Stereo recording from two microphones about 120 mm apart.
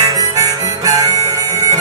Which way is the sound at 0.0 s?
30° right (ahead or behind).